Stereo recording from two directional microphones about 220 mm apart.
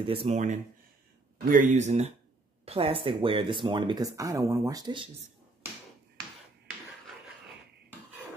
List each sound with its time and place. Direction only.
0.0 s speech: 25° right (ahead or behind)